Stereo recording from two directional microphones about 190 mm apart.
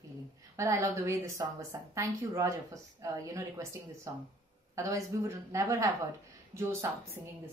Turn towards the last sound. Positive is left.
turn(degrees=-15)  # may be behind; listen again after turning